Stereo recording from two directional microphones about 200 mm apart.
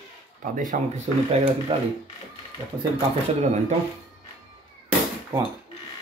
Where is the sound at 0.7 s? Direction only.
45° right (ahead or behind).